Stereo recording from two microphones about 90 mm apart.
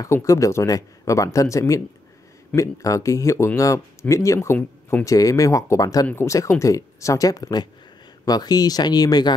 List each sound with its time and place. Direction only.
0.0 s speech: 35° left (ahead or behind)